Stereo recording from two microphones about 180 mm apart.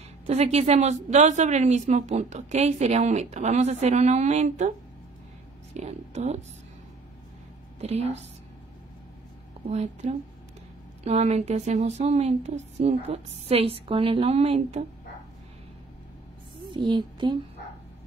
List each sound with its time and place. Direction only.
0.3 s speech: 35° right (ahead or behind)
5.8 s speech: 40° right (ahead or behind)
7.8 s speech: 35° right (ahead or behind)
9.7 s speech: 40° right (ahead or behind)
16.7 s a woman's voice: 25° right (ahead or behind)